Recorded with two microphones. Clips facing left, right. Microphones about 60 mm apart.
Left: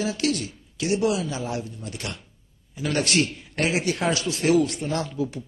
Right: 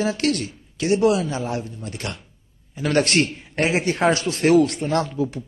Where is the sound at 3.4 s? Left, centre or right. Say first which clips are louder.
Right 3 dB; right.